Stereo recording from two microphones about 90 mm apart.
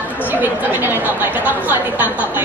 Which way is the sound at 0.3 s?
20° right (ahead or behind).